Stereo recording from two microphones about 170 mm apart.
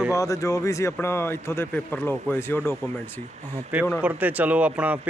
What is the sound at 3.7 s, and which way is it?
Speech, 10° right (ahead or behind).